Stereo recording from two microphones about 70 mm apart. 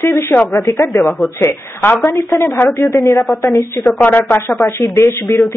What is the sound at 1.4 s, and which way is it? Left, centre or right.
Speech, left.